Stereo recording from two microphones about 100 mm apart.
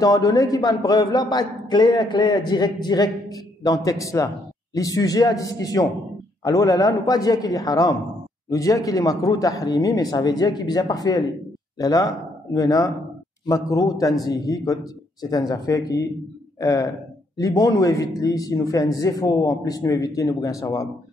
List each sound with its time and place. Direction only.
0.0 s a man's voice: 40° left (ahead or behind)